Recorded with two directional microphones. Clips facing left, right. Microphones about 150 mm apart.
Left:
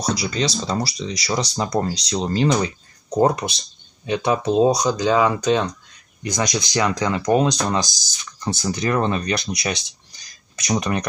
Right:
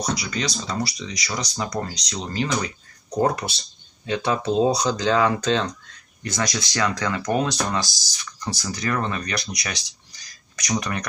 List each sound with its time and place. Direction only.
0.1 s speech: 30° left (ahead or behind)
3.1 s speech: 20° left (ahead or behind)